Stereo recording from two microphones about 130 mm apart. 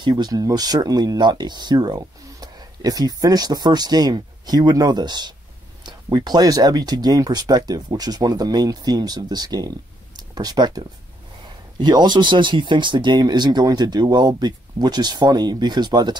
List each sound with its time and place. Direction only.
0.0 s speech: 35° right (ahead or behind)
10.1 s a sound: 30° right (ahead or behind)
11.8 s speech: 35° right (ahead or behind)